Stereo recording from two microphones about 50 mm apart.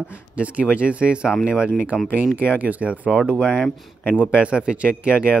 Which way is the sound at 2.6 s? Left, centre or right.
Right.